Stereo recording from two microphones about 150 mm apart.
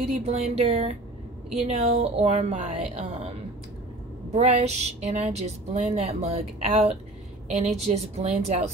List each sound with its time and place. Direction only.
0.2 s speech: 45° right (ahead or behind)
4.3 s speech: 45° right (ahead or behind)